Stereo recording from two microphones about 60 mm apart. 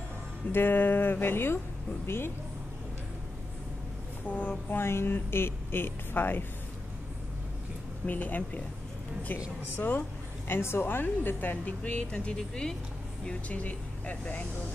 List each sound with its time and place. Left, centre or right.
0.5 s speech: left
4.3 s speech: left
8.1 s speech: left
9.8 s speech: left
10.5 s speech: left
12.1 s speech: centre